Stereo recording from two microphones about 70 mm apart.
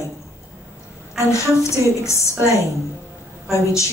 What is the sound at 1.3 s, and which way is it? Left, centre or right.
A woman's voice, left.